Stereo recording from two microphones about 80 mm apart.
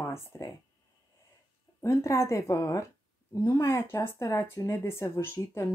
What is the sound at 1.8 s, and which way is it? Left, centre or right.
Speech, left.